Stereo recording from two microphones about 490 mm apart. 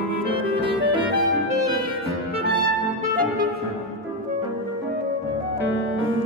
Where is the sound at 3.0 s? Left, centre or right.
Centre.